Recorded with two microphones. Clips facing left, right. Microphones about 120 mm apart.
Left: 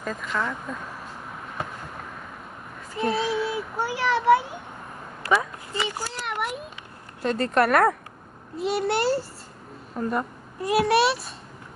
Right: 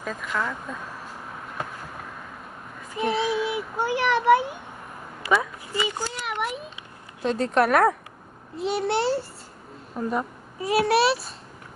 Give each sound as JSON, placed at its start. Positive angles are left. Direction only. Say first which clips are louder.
{"t": 0.0, "sound": "a child's voice", "louder": "even", "side_deg": 0}
{"t": 3.0, "sound": "a child's voice", "louder": "even", "side_deg": -10}
{"t": 5.7, "sound": "a child's voice", "louder": "right 3 dB", "side_deg": -5}